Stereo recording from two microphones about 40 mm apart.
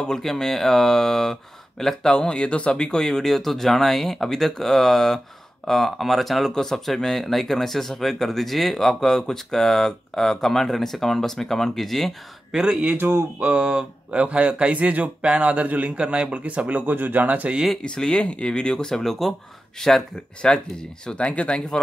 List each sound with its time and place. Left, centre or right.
0.0 s speech: centre
2.1 s speech: left; by 6.5 s centre
6.5 s speech: centre
12.4 s speech: centre
13.0 s speech: right
13.4 s a man's voice: right
16.9 s speech: right
17.8 s speech: left